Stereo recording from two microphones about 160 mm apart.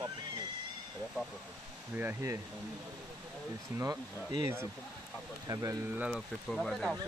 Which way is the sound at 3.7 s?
20° right (ahead or behind).